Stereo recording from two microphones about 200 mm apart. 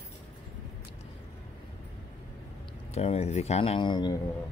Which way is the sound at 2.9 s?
30° left (ahead or behind).